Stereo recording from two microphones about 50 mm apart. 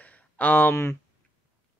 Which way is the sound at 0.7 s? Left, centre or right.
Left.